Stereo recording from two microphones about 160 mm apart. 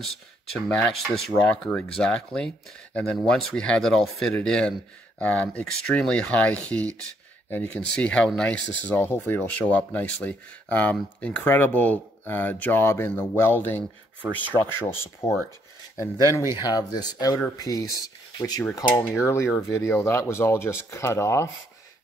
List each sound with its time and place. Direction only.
0.0 s speech: 5° left (ahead or behind)
16.5 s speech: 25° left (ahead or behind)